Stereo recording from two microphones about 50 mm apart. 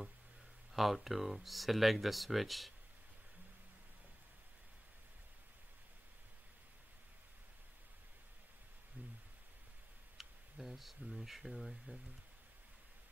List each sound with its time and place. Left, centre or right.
0.7 s speech: centre
10.1 s speech: centre